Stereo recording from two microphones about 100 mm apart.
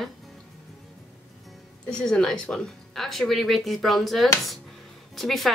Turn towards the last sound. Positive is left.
turn(degrees=0)  # may be behind; listen again after turning